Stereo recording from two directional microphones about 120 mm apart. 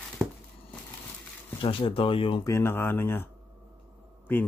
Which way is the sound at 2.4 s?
20° left (ahead or behind).